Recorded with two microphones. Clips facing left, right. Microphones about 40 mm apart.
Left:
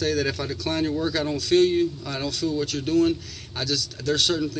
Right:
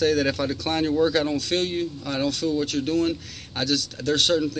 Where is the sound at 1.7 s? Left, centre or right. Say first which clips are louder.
Left 4 dB; centre.